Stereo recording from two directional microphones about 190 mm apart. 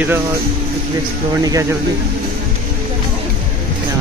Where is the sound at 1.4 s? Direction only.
20° right (ahead or behind).